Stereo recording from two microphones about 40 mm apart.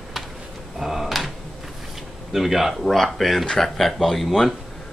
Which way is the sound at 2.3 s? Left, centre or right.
Centre.